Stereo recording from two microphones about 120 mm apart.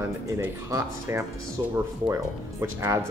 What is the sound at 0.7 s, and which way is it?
Speech, 25° right (ahead or behind).